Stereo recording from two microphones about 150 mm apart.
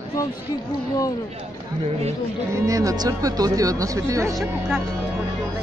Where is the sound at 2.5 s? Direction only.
20° right (ahead or behind).